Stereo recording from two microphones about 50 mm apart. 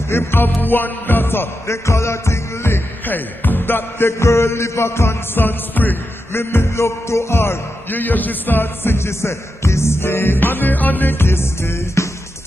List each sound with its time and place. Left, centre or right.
0.1 s music: left
1.7 s music: left
3.1 s music: left
4.1 s mantra: left
5.3 s music: left
6.3 s music: left
6.6 s mantra: left
7.9 s music: left
8.9 s music: left
11.1 s music: left